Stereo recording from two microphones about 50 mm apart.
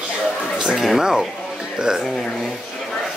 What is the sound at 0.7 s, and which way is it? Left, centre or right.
Speech, centre.